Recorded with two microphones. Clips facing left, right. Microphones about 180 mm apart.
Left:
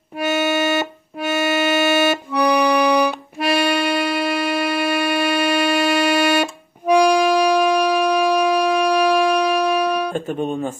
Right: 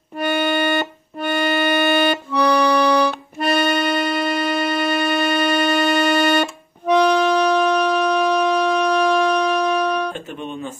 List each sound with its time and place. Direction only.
0.2 s music: 10° left (ahead or behind)
10.1 s speech: 45° left (ahead or behind)